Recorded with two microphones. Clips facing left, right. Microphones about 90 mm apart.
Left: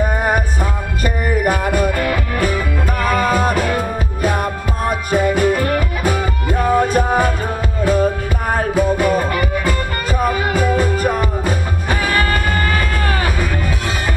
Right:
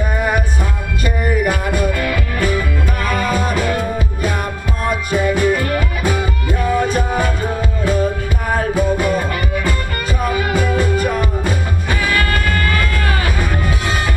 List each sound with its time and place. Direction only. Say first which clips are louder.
1.0 s music: even; 45° left (ahead or behind)